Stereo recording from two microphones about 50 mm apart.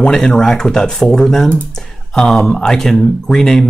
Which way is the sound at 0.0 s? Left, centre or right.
Centre.